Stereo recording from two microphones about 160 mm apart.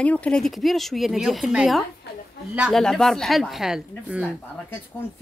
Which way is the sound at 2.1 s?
90° left.